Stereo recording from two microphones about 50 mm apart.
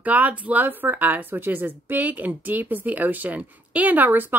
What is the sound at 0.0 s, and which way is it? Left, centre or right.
Speech, right.